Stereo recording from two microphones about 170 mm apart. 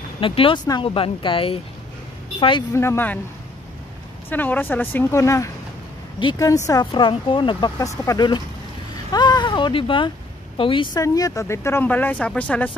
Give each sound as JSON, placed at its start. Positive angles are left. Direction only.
{"t": 0.2, "sound": "speech", "side_deg": 30}
{"t": 2.7, "sound": "speech", "side_deg": 15}
{"t": 4.3, "sound": "speech", "side_deg": 10}
{"t": 8.9, "sound": "a sound", "side_deg": 25}
{"t": 10.6, "sound": "speech", "side_deg": 30}